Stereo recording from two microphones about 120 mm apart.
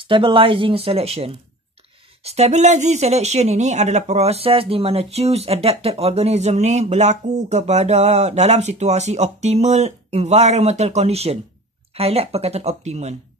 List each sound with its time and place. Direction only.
0.0 s speech: 45° right (ahead or behind); by 13.1 s 65° right (ahead or behind)